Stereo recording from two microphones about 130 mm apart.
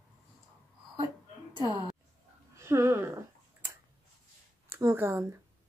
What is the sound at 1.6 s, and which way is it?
Speech, 35° right (ahead or behind).